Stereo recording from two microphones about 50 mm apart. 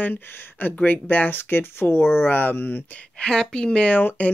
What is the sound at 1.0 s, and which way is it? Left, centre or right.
Speech, left.